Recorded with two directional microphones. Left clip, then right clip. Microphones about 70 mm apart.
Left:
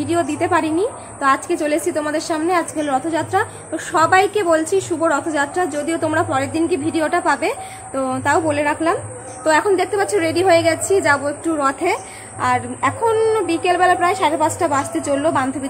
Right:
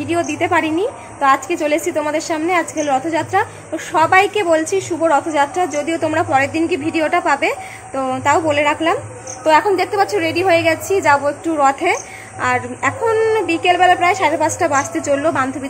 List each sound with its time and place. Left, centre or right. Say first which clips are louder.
0.0 s speech: right 1 dB; left
2.7 s a woman's voice: right 2 dB; left; by 9.7 s centre
9.7 s a woman's voice: right 2 dB; centre